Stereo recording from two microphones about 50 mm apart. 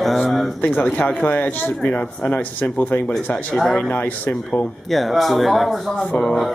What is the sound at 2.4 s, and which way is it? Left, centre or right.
Speech, left.